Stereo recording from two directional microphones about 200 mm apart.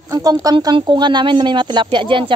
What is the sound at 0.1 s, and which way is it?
Speech, 20° right (ahead or behind).